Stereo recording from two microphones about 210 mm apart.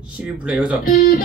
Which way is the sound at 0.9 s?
40° left (ahead or behind).